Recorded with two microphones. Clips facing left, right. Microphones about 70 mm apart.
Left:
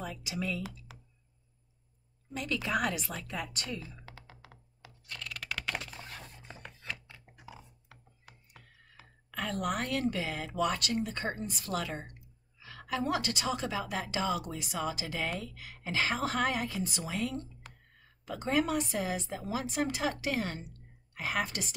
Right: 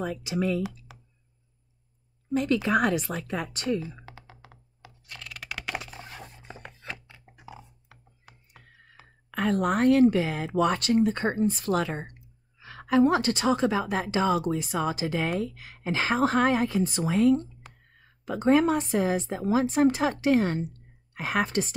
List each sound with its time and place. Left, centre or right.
0.0 s a woman's voice: right
0.6 s speech: centre
2.3 s a woman's voice: right
3.5 s a woman's voice: right
4.0 s computer keyboard: centre
7.1 s a sound: centre
9.3 s a woman's voice: right